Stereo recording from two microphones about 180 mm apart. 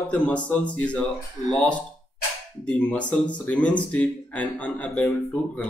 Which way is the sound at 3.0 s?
25° left (ahead or behind).